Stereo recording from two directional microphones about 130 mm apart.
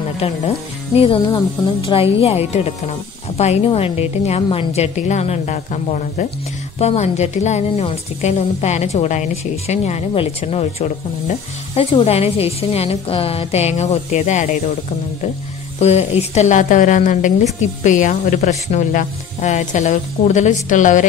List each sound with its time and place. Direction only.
0.2 s speech: 50° left (ahead or behind)
2.2 s a woman's voice: 55° left (ahead or behind)
15.8 s a woman's voice: 55° left (ahead or behind); by 21.0 s 75° left (ahead or behind)